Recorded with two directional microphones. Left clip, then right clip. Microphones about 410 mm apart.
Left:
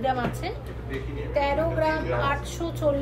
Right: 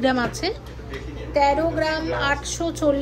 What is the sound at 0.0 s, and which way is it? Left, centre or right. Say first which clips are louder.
A woman's voice: right 5 dB; right.